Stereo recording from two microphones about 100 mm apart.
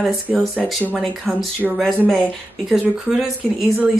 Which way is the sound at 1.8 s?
5° left (ahead or behind).